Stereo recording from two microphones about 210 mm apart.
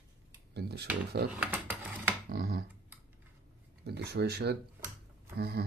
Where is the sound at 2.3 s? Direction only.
50° right (ahead or behind).